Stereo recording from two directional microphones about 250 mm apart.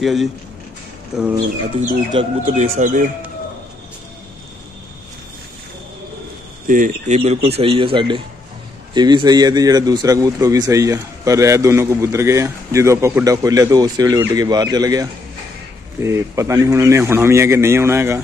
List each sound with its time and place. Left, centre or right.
0.0 s speech: centre
1.8 s speech: right
6.7 s a man's voice: right; by 18.2 s centre